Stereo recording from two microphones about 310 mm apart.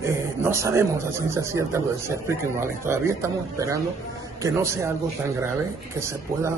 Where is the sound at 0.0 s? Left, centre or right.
Centre.